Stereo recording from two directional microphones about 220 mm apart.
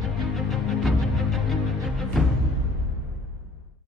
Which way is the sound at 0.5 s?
Centre (ahead or behind).